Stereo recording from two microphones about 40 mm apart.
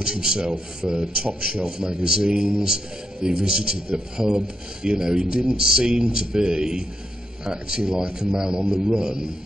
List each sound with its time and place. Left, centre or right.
0.0 s speech: centre